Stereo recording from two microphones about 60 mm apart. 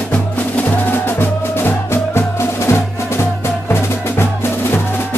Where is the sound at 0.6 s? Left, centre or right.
Left.